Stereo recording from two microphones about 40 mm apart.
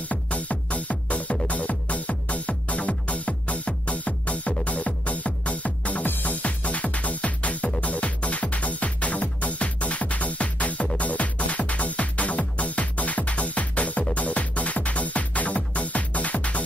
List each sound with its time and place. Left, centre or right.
0.1 s music: left